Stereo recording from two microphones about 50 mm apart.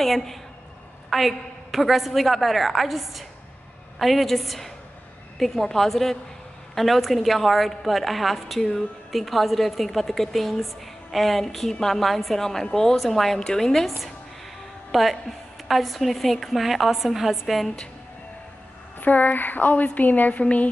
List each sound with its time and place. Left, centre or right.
0.0 s a woman's voice: centre
18.9 s a woman's voice: left